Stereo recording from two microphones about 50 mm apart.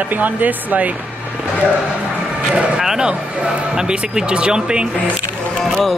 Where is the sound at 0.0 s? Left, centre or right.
Right.